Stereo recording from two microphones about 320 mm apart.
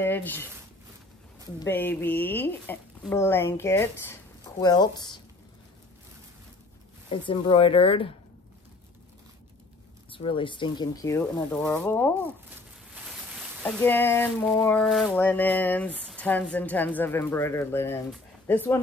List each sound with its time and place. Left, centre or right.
0.0 s speech: centre
1.6 s speech: centre
7.1 s speech: centre
10.1 s speech: centre